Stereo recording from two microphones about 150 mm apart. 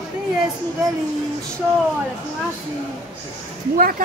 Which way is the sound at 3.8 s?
70° right (ahead or behind).